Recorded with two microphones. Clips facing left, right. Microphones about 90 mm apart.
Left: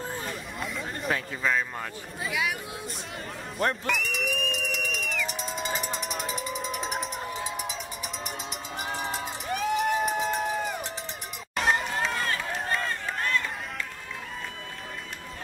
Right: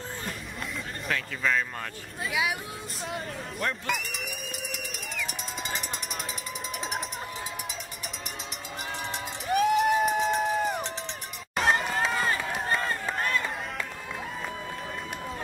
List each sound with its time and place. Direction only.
0.6 s a sound: 5° left (ahead or behind)
2.2 s speech: centre (ahead or behind)
3.8 s a sound: centre (ahead or behind)
5.8 s music: centre (ahead or behind)
8.9 s run: 5° left (ahead or behind)
9.5 s crowd: 5° right (ahead or behind)
11.5 s run: centre (ahead or behind)